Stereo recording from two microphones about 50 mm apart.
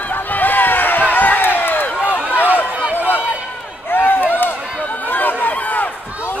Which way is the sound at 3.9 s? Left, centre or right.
Left.